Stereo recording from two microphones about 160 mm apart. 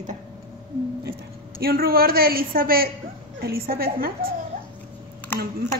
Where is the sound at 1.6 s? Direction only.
70° right (ahead or behind).